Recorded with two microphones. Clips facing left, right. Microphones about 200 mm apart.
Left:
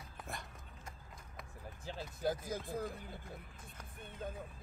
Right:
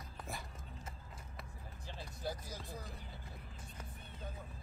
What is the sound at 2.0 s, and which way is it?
Speech, 50° left (ahead or behind).